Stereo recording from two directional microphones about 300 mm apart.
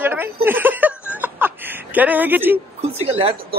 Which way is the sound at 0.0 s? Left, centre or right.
Centre.